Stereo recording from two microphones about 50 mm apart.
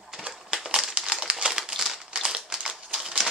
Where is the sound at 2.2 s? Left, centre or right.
Centre.